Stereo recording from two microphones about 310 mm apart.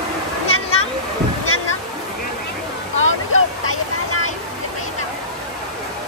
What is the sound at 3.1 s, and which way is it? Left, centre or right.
Vehicle, left.